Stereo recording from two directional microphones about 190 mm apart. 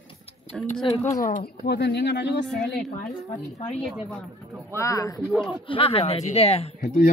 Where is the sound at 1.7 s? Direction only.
60° left (ahead or behind).